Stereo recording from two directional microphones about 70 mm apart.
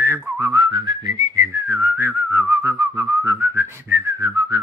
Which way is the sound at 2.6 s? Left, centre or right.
Right.